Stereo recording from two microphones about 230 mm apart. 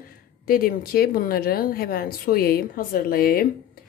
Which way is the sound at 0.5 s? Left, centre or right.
Left.